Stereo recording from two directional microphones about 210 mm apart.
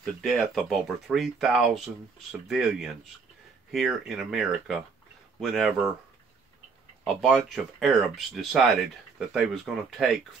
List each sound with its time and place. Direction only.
0.0 s speech: centre (ahead or behind)
7.1 s speech: centre (ahead or behind)